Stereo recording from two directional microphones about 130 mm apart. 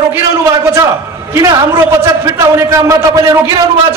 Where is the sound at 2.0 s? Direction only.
20° right (ahead or behind).